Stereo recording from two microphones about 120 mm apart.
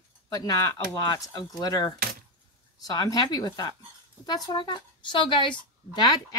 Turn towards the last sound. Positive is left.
turn(degrees=35)  # may be behind; listen again after turning